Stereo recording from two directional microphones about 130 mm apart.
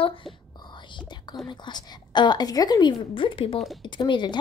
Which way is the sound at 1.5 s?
35° left (ahead or behind).